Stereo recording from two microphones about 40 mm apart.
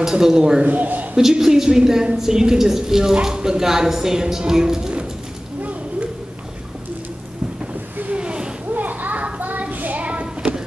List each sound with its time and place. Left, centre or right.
0.0 s a woman's voice: centre
0.7 s a man's voice: right
1.1 s a woman's voice: centre
5.6 s a sound: right
8.1 s a sound: right
8.7 s children playing: right